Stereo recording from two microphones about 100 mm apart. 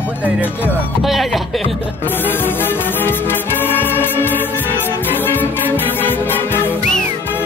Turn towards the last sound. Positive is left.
turn(degrees=20)  # may be behind; listen again after turning